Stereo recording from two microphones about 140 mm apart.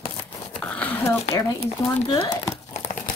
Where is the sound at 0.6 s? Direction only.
15° left (ahead or behind).